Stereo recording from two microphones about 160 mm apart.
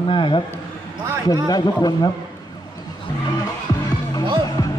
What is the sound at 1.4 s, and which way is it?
Speech, 25° left (ahead or behind).